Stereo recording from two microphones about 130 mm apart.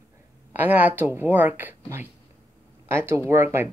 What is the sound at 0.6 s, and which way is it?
Speech, 15° right (ahead or behind).